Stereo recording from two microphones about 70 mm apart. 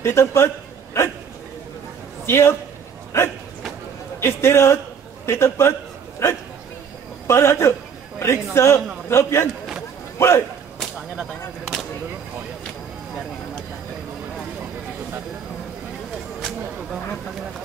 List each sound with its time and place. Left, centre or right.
0.0 s a man's voice: left
2.2 s a man's voice: left